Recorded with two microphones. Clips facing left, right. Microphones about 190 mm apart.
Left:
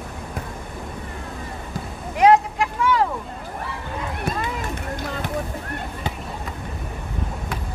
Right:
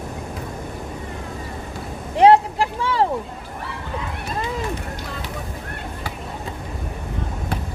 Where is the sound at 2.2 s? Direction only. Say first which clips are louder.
Right 2 dB; 30° right (ahead or behind).